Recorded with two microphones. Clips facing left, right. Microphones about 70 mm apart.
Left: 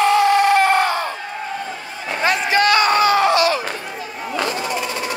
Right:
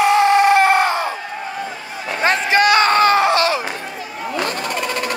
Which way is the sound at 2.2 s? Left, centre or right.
Right.